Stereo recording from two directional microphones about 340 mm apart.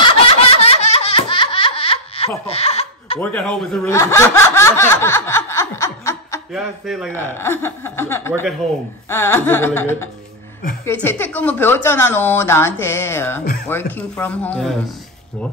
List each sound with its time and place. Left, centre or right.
0.0 s laughter: centre
3.2 s speech: centre